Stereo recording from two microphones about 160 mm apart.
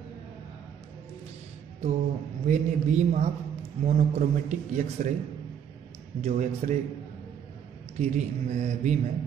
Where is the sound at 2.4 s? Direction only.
45° right (ahead or behind).